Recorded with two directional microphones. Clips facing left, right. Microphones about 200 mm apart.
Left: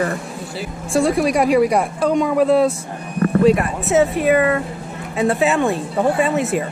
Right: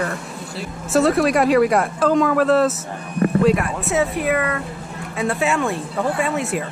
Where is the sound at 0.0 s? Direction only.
Centre (ahead or behind).